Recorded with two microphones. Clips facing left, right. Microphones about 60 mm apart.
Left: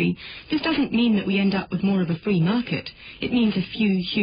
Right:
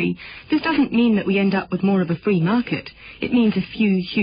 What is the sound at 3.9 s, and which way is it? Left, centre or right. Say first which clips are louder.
Speech: right 3 dB; right.